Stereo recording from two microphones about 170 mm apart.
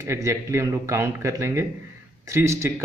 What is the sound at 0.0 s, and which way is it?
Speech, 15° right (ahead or behind).